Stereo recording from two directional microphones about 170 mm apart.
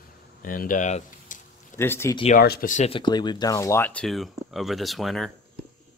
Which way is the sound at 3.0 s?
25° left (ahead or behind).